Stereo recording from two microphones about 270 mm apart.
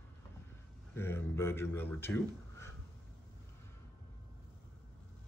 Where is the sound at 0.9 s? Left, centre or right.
Centre.